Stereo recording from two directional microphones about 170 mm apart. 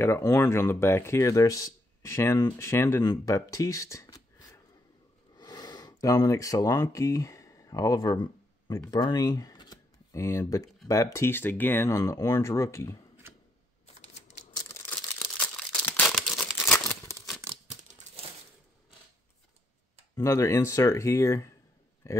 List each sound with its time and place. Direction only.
0.0 s speech: 15° left (ahead or behind)
5.3 s a sound: 25° left (ahead or behind)
10.9 s speech: 15° left (ahead or behind)
13.8 s typewriter: 40° left (ahead or behind)
14.5 s a sound: 20° left (ahead or behind)
14.9 s tearing: 10° left (ahead or behind)
17.6 s crumpling: 45° right (ahead or behind)
20.2 s speech: 15° left (ahead or behind)